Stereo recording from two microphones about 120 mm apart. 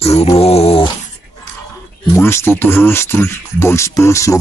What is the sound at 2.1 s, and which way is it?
Speech, 20° left (ahead or behind).